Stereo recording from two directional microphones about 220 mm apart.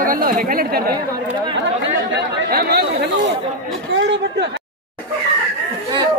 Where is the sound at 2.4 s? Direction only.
45° right (ahead or behind).